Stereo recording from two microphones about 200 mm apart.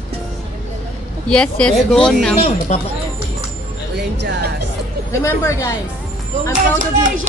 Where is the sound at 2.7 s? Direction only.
35° left (ahead or behind).